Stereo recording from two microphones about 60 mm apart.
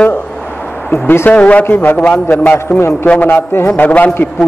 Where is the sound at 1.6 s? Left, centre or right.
Left.